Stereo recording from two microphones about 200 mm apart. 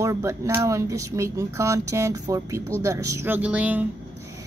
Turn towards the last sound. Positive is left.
turn(degrees=-10)  # may be behind; listen again after turning